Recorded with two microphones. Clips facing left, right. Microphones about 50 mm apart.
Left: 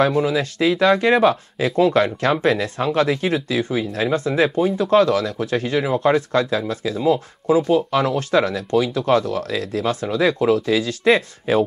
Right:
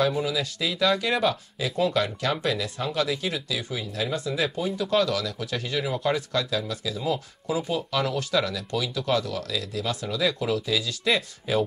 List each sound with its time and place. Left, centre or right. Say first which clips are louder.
0.0 s speech: left 7 dB; left